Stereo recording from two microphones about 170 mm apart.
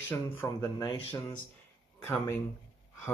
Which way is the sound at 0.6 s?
25° left (ahead or behind).